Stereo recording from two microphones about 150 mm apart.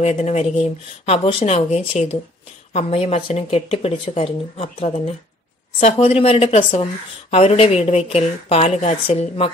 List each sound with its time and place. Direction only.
0.0 s a woman's voice: 45° left (ahead or behind)